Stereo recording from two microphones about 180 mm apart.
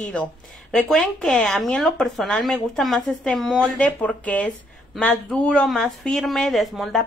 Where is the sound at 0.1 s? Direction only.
5° left (ahead or behind).